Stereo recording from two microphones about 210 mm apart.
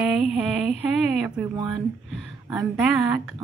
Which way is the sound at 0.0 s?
5° right (ahead or behind).